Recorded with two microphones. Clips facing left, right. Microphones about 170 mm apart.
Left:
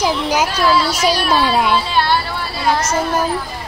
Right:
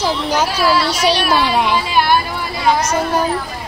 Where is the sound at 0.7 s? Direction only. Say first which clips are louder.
Even; 10° left (ahead or behind).